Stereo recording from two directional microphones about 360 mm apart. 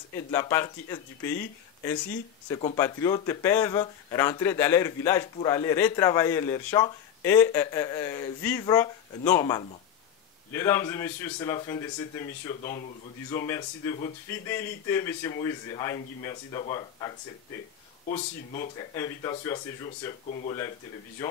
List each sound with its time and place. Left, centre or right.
0.3 s speech: centre
18.0 s speech: left
18.8 s speech: centre